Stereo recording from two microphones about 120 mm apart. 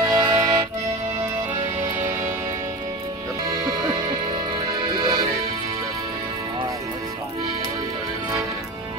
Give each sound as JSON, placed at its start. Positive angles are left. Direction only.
{"t": 0.0, "sound": "accordion", "side_deg": -25}
{"t": 2.0, "sound": "music", "side_deg": -20}
{"t": 3.4, "sound": "music", "side_deg": -35}